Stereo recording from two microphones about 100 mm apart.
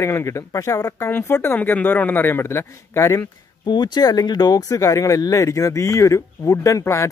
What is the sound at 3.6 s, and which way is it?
Speech, 50° left (ahead or behind).